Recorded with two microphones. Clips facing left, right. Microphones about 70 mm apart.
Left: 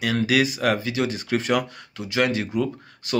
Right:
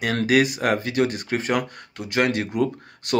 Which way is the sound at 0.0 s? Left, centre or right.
Right.